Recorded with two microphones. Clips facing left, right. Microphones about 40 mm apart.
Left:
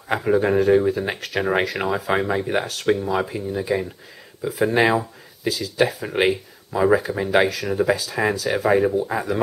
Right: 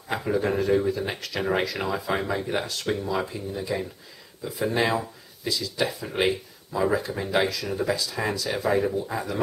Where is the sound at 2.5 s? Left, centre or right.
Left.